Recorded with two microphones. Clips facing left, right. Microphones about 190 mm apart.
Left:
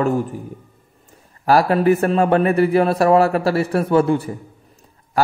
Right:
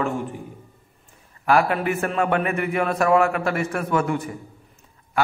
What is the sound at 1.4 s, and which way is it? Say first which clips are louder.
A man's voice: left 5 dB; 35° left (ahead or behind).